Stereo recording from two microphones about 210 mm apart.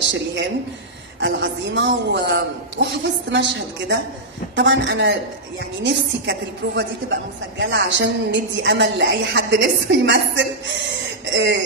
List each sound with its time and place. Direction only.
0.1 s a woman's voice: 60° right (ahead or behind)